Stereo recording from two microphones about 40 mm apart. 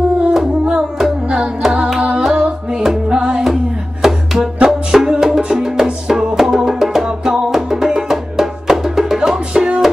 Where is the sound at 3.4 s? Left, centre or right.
Centre.